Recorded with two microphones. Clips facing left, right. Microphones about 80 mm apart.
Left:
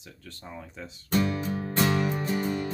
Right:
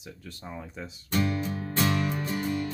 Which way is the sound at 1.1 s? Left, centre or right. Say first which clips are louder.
Left 2 dB; left.